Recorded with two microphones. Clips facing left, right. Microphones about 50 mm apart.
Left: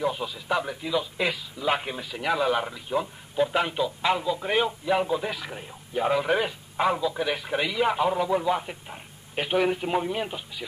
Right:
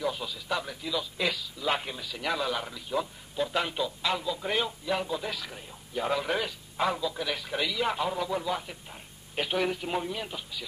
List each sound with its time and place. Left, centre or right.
0.0 s a man's voice: centre